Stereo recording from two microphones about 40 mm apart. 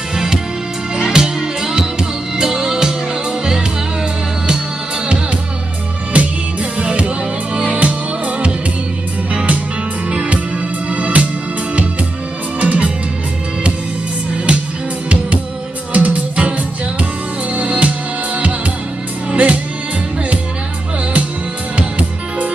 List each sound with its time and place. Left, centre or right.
0.1 s music: centre
6.1 s music: right
12.5 s music: right
15.9 s music: right
21.7 s music: right